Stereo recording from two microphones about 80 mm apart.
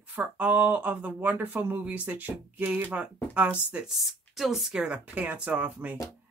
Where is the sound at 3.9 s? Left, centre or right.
Centre.